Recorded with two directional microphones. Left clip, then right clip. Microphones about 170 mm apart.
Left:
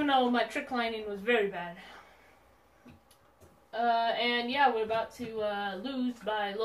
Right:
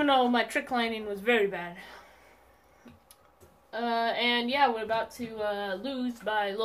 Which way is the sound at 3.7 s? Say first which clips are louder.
Left 1 dB; 50° right (ahead or behind).